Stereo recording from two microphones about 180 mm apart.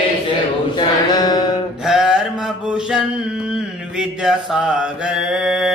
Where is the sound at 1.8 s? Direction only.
5° right (ahead or behind).